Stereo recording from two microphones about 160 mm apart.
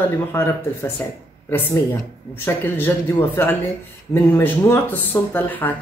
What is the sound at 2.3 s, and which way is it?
Speech, 15° left (ahead or behind).